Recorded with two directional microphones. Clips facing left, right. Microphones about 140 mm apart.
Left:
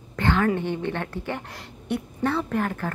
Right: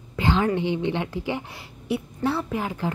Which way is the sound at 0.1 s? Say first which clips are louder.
Even; 15° right (ahead or behind).